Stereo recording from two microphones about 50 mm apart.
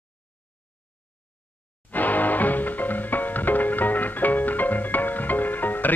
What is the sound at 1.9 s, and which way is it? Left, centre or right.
Music, left.